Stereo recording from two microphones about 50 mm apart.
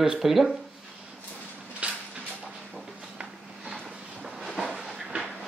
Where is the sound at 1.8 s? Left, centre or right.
Right.